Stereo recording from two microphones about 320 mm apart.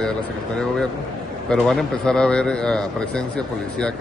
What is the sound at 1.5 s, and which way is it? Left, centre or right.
A man's voice, centre.